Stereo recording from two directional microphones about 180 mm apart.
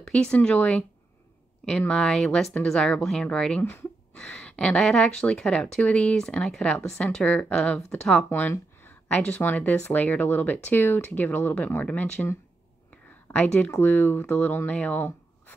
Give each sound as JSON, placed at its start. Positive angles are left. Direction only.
{"t": 0.0, "sound": "speech", "side_deg": 5}